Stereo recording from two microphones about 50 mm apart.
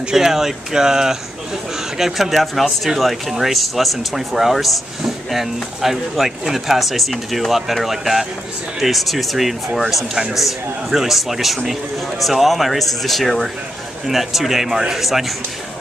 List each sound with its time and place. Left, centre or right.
0.1 s speech: centre